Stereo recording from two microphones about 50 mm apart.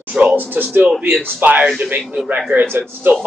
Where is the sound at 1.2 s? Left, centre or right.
Right.